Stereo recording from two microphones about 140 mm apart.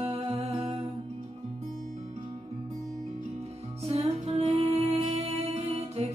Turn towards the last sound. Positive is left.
turn(degrees=-50)  # may be behind; listen again after turning